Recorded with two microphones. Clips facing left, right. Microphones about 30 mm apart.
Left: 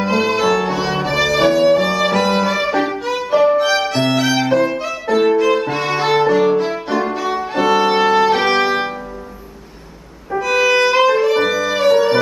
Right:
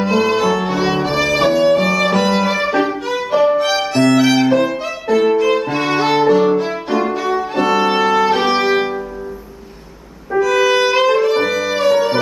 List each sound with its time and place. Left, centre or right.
0.0 s music: centre
0.4 s violin: centre
5.0 s violin: centre
7.9 s violin: centre
10.4 s music: centre